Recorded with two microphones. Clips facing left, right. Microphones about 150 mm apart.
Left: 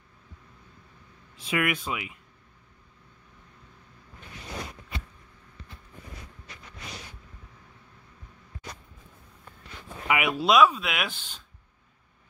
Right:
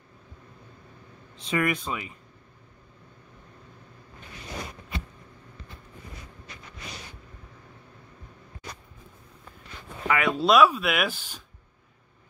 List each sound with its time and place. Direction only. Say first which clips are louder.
1.3 s speech: right 1 dB; 5° left (ahead or behind)
10.0 s speech: right 1 dB; 15° left (ahead or behind)
10.4 s speech: right 1 dB; centre (ahead or behind)